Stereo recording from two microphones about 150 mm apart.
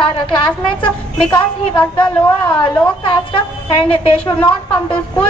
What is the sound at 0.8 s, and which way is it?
A woman's voice, 35° left (ahead or behind).